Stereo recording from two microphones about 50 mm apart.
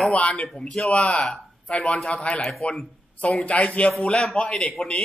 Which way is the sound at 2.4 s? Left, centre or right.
Centre.